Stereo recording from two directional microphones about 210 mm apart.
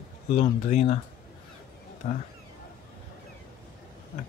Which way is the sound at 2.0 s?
40° left (ahead or behind).